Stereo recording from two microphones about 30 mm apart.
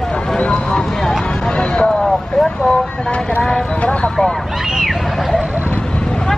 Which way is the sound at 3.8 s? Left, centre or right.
Left.